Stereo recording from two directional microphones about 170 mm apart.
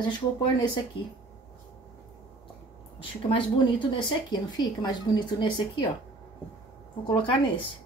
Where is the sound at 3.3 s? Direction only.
30° left (ahead or behind).